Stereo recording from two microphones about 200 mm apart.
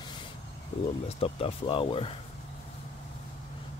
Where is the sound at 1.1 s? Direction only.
30° left (ahead or behind).